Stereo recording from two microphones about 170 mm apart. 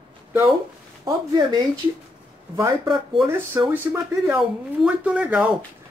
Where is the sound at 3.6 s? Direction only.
15° right (ahead or behind).